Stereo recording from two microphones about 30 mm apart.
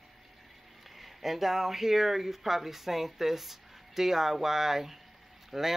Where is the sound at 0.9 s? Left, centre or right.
Centre.